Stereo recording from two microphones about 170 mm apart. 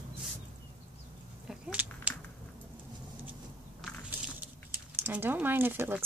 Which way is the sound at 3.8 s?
5° right (ahead or behind).